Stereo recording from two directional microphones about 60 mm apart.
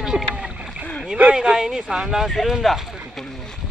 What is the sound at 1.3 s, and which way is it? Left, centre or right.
Speech, centre.